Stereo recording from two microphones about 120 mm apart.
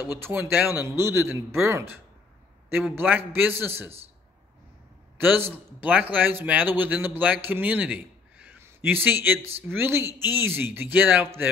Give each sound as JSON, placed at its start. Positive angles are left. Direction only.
{"t": 0.0, "sound": "a man's voice", "side_deg": -20}
{"t": 3.0, "sound": "speech", "side_deg": -15}
{"t": 5.1, "sound": "a man's voice", "side_deg": -15}